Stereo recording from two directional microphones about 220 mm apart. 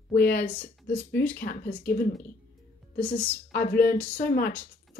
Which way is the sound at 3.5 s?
45° left (ahead or behind).